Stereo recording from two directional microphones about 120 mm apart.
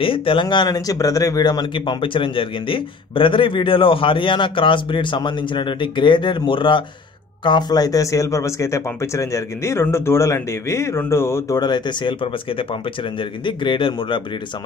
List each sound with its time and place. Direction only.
0.0 s speech: 50° left (ahead or behind)